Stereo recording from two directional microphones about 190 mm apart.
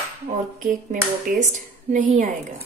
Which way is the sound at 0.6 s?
45° right (ahead or behind).